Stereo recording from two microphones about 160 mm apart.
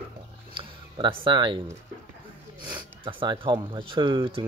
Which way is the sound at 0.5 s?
30° right (ahead or behind).